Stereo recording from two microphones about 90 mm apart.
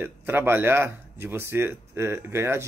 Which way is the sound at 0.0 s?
25° right (ahead or behind).